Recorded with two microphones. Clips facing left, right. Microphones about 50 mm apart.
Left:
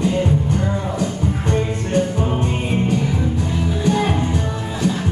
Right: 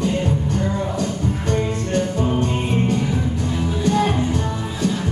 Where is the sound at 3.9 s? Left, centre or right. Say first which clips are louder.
Even; left.